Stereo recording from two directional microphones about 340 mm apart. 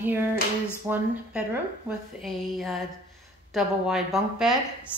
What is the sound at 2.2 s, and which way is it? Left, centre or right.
Speech, centre.